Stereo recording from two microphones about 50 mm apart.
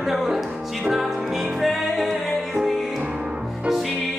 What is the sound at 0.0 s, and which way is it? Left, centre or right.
Music, centre.